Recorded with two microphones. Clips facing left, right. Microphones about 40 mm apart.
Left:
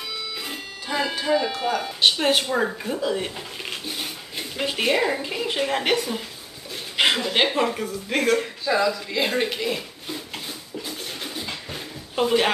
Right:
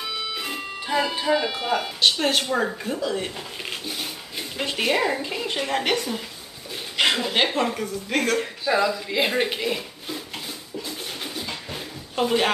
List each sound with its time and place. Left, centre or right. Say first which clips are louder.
0.4 s music: right 3 dB; centre
1.3 s speech: left 1 dB; centre
2.0 s speech: left 2 dB; centre
8.6 s speech: right 1 dB; centre
10.9 s a sound: even; centre